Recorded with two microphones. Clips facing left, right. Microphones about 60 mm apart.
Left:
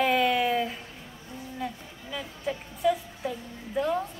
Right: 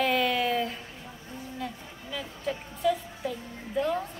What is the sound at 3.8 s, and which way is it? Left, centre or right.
Speech, centre.